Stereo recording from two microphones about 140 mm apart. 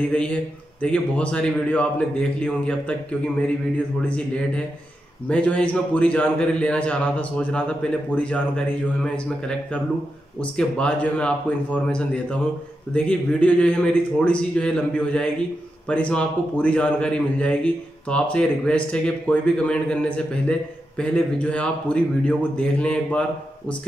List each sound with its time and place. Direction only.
0.8 s a man's voice: 10° left (ahead or behind)
5.3 s a man's voice: 10° left (ahead or behind)